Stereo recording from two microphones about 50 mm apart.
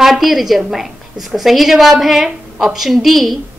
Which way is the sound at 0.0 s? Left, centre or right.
Centre.